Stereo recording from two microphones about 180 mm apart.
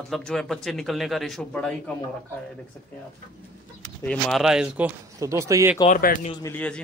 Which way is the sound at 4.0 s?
5° left (ahead or behind).